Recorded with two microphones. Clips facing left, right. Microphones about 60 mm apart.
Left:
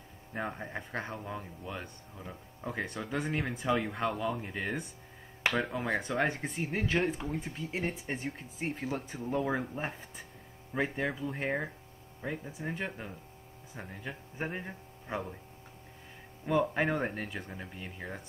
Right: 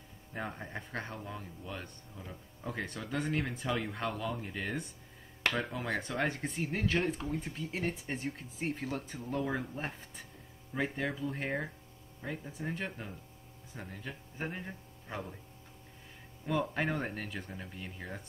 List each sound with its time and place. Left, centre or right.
0.3 s speech: centre
5.9 s speech: centre
16.4 s speech: centre